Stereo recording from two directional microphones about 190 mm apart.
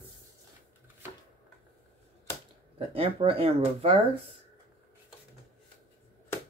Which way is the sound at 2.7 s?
30° right (ahead or behind).